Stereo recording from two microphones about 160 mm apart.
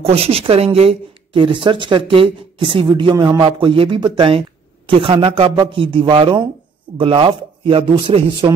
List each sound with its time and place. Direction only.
0.0 s speech: 40° right (ahead or behind)